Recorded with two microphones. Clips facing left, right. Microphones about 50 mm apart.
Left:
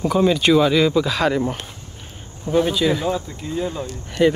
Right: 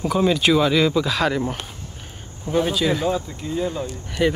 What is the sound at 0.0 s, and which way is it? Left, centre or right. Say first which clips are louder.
Speech: left 2 dB; centre.